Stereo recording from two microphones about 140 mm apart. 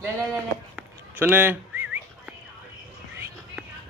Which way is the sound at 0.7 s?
10° right (ahead or behind).